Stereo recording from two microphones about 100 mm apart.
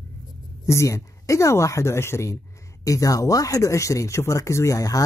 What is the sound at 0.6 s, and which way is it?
Speech, 30° left (ahead or behind).